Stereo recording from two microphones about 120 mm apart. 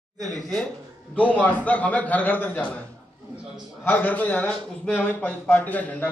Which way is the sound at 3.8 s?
15° left (ahead or behind).